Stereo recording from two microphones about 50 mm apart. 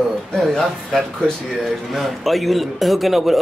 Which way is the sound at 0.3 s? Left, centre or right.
Centre.